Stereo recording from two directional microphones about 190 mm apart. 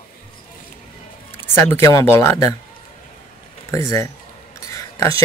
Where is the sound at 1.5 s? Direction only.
15° left (ahead or behind).